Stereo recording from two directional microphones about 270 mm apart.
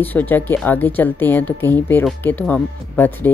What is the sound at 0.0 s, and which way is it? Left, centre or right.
A woman's voice, centre.